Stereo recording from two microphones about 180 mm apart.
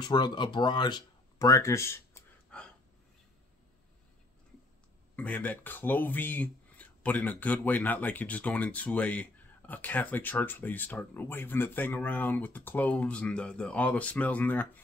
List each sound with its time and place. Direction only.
0.0 s speech: 25° left (ahead or behind); by 2.7 s 10° left (ahead or behind)
5.1 s speech: 10° left (ahead or behind)